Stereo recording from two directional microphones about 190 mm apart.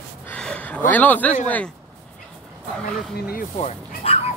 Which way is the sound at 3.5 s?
30° left (ahead or behind).